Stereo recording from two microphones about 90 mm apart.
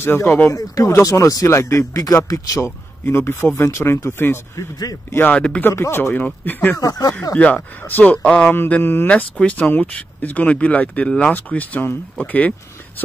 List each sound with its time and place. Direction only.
0.0 s speech: 25° left (ahead or behind)
0.5 s speech: 40° left (ahead or behind)
3.1 s speech: 25° left (ahead or behind)
5.3 s speech: 10° left (ahead or behind)
5.7 s speech: 30° left (ahead or behind)
6.8 s speech: 40° left (ahead or behind)
7.3 s speech: 15° left (ahead or behind)